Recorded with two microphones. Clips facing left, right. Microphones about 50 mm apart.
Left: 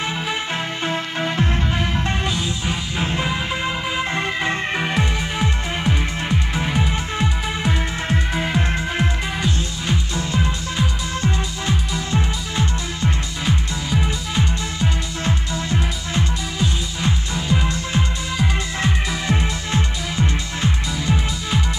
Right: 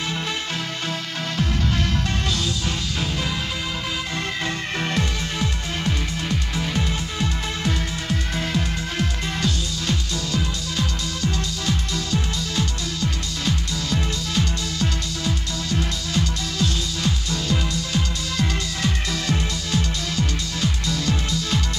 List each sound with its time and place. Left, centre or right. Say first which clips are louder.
0.8 s music: left 5 dB; left
3.0 s music: left 6 dB; left